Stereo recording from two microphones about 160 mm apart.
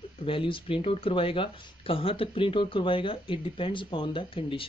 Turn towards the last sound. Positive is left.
turn(degrees=35)  # may be behind; listen again after turning